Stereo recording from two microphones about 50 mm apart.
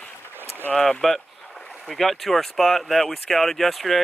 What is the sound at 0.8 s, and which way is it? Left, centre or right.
Boat, centre.